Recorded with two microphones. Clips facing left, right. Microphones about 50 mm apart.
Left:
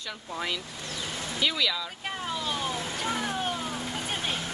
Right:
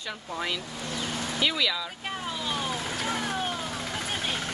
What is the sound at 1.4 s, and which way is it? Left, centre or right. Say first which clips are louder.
Vehicle: even; centre.